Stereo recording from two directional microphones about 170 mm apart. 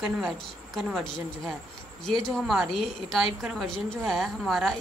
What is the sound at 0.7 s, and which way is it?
A woman's voice, centre (ahead or behind).